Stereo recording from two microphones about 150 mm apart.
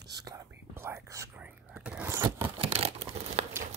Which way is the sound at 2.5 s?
45° right (ahead or behind).